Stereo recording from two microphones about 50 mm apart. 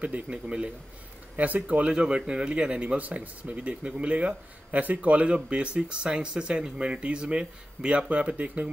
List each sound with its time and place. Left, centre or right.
0.0 s speech: right